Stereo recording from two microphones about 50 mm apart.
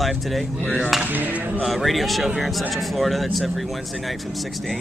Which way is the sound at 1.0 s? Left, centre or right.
Right.